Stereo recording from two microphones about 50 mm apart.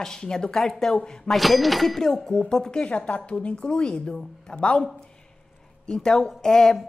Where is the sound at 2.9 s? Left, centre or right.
Left.